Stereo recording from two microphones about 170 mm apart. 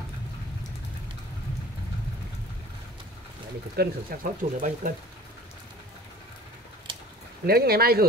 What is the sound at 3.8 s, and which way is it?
Speech, 65° right (ahead or behind).